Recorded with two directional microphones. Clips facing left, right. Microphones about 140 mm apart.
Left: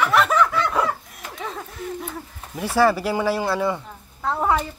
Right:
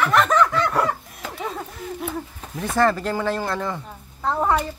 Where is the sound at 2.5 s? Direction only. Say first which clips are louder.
Left 1 dB; 5° left (ahead or behind).